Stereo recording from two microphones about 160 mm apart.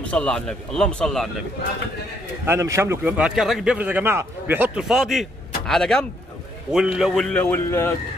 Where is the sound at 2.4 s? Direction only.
15° right (ahead or behind); by 8.0 s 15° left (ahead or behind).